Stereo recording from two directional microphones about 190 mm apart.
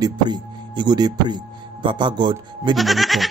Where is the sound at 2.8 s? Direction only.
Centre (ahead or behind).